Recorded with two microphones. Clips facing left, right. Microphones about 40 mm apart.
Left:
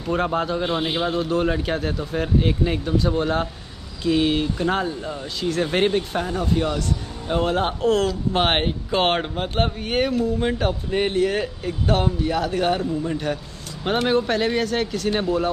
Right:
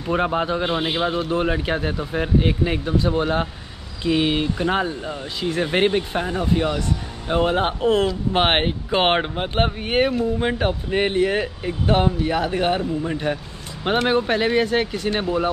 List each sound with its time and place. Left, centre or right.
0.0 s speech: centre